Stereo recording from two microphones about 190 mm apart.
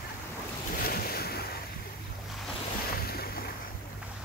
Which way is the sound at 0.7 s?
50° left (ahead or behind).